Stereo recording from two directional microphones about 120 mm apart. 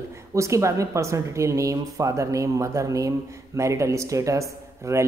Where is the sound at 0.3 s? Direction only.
25° right (ahead or behind).